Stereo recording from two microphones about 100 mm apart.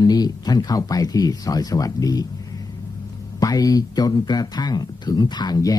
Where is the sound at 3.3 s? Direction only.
35° left (ahead or behind).